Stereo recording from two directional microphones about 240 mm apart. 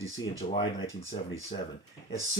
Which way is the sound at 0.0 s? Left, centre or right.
Centre.